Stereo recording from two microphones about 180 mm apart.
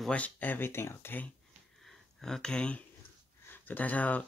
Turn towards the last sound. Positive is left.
turn(degrees=10)  # may be behind; listen again after turning